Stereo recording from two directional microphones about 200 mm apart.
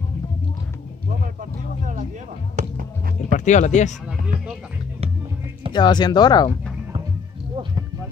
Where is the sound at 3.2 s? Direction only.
35° left (ahead or behind).